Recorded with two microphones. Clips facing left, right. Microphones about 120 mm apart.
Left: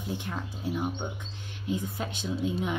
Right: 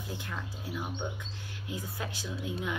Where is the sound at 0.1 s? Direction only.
25° left (ahead or behind).